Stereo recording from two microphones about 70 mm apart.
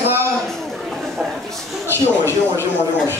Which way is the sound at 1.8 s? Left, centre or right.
Right.